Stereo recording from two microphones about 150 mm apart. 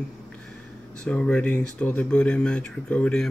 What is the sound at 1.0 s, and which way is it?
Speech, 5° left (ahead or behind).